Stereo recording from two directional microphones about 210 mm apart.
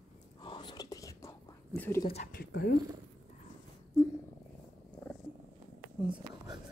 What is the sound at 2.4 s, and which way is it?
Speech, 45° left (ahead or behind).